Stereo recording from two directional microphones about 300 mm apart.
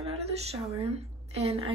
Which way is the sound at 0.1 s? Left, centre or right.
Right.